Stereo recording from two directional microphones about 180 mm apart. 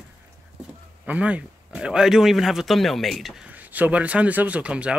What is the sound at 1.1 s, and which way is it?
A man's voice, 5° right (ahead or behind).